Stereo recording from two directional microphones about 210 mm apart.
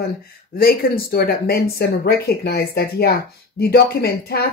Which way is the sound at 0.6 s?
45° left (ahead or behind).